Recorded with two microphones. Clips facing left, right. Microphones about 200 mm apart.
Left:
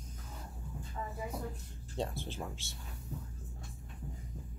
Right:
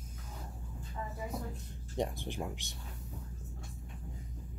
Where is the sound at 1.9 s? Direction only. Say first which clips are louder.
Right 3 dB; 15° right (ahead or behind).